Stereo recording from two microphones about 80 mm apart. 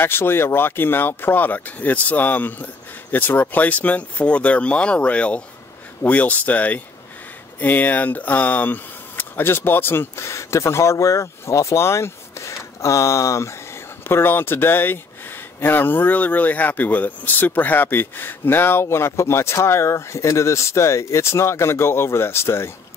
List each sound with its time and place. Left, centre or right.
0.0 s speech: left